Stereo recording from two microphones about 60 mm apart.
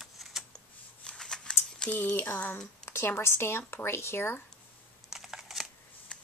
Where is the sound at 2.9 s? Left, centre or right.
Left.